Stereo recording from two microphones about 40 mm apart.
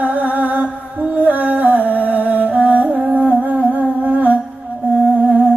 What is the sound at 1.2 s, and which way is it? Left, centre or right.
Music, right.